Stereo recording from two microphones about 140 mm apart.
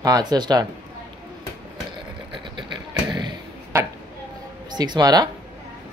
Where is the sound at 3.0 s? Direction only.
35° right (ahead or behind).